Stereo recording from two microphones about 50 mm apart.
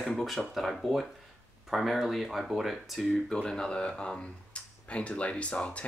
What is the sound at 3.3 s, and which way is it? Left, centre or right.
Speech, centre.